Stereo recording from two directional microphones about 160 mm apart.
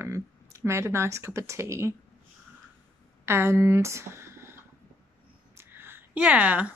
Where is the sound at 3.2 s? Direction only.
15° right (ahead or behind).